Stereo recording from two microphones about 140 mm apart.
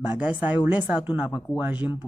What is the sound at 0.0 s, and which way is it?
A woman's voice, 5° right (ahead or behind).